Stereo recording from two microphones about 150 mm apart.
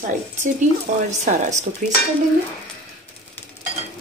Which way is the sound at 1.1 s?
55° right (ahead or behind).